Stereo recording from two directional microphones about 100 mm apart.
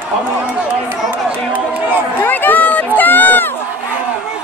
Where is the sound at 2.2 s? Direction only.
20° left (ahead or behind).